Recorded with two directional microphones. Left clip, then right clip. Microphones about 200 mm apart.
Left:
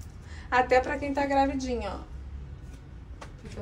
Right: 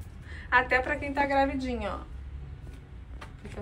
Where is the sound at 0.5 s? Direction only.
30° left (ahead or behind); by 2.0 s 15° left (ahead or behind).